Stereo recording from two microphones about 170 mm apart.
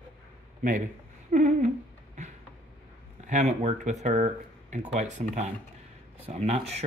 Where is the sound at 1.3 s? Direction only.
50° right (ahead or behind).